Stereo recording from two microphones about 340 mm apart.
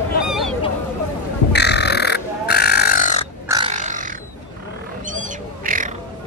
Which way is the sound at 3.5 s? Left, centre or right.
Centre.